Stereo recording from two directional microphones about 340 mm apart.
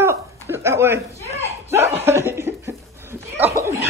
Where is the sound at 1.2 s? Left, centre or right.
Centre.